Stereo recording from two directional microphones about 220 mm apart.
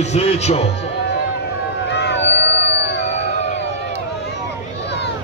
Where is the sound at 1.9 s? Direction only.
50° left (ahead or behind).